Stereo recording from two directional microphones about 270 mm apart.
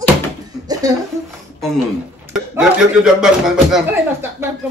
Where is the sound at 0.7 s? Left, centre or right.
Centre.